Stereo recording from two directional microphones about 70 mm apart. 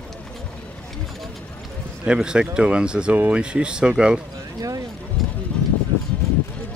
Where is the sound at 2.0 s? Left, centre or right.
Centre.